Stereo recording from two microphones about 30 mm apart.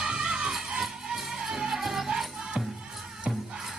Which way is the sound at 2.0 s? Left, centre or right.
Right.